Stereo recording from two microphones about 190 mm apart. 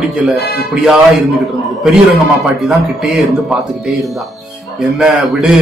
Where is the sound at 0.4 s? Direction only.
55° left (ahead or behind).